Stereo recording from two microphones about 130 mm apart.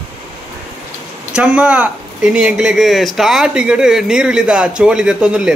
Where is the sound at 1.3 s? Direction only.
10° right (ahead or behind).